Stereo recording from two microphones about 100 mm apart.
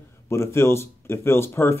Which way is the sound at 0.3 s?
30° left (ahead or behind).